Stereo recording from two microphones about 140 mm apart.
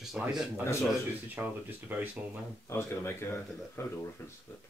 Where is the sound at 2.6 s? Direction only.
20° left (ahead or behind).